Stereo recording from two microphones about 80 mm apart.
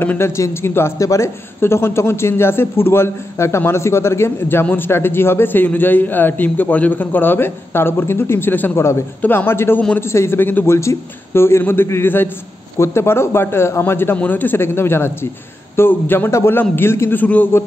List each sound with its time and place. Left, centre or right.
0.2 s a man's voice: left
17.2 s speech: left